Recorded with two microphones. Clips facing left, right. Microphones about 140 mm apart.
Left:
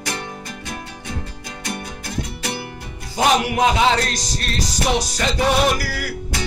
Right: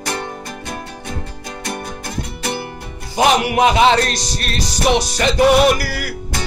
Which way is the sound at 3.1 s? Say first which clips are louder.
Right 3 dB; 70° right (ahead or behind).